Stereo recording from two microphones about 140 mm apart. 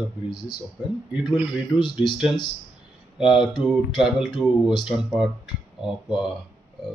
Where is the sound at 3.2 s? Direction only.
5° right (ahead or behind).